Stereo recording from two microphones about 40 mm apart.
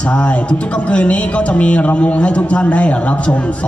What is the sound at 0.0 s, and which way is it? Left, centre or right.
A man's voice, left.